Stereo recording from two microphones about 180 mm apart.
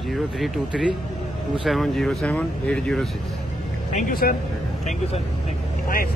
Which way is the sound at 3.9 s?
50° left (ahead or behind).